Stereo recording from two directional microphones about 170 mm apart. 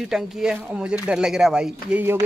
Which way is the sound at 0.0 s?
5° right (ahead or behind).